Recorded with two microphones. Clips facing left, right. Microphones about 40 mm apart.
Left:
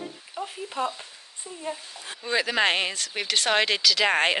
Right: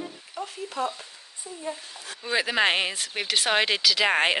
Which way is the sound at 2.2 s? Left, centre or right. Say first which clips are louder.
Even; centre.